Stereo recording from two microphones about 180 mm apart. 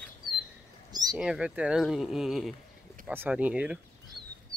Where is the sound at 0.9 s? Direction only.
20° right (ahead or behind).